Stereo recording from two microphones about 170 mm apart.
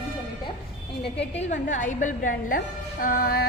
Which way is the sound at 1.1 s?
40° left (ahead or behind).